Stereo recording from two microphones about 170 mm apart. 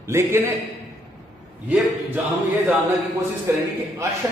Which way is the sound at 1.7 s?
10° right (ahead or behind).